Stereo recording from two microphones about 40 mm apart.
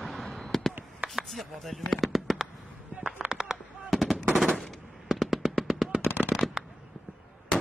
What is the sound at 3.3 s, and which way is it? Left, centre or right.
Fireworks, centre.